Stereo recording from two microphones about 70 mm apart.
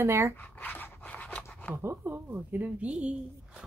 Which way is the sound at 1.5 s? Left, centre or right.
Centre.